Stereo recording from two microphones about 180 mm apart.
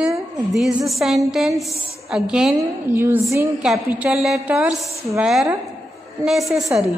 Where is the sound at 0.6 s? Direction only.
Centre (ahead or behind).